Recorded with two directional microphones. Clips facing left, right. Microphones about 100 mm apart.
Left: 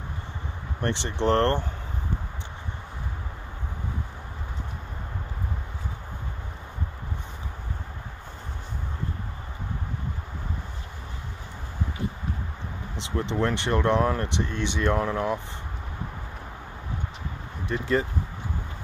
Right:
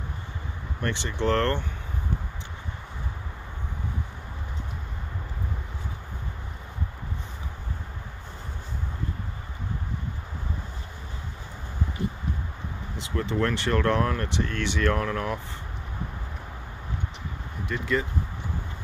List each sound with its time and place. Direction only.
0.8 s speech: 25° left (ahead or behind)
12.9 s speech: 25° left (ahead or behind)
17.6 s speech: 30° left (ahead or behind)